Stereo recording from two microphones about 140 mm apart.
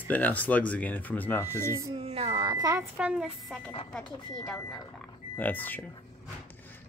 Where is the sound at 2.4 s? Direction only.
25° right (ahead or behind).